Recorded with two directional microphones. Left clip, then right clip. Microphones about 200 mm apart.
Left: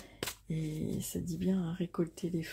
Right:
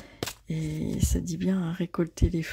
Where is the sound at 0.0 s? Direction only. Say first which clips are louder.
Right 5 dB; 15° right (ahead or behind).